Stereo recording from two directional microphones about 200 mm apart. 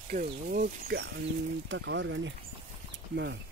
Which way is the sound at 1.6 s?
65° right (ahead or behind).